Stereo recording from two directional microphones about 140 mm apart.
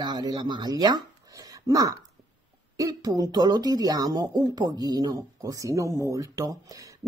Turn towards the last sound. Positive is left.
turn(degrees=-25)  # may be behind; listen again after turning